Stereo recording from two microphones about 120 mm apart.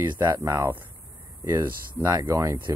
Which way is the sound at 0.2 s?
30° right (ahead or behind).